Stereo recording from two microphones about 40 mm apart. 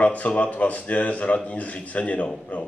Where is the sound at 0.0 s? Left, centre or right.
Left.